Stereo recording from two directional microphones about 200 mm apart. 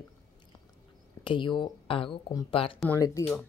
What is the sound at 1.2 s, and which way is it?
Cutlery, 25° left (ahead or behind).